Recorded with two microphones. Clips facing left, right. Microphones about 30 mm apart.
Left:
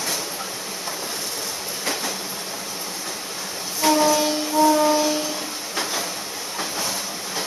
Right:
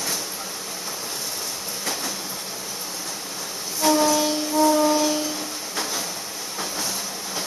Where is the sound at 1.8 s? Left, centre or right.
Centre.